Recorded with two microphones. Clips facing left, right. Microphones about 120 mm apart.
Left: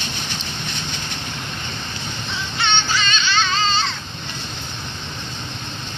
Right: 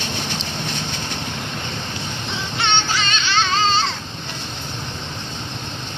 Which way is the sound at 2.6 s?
60° right (ahead or behind).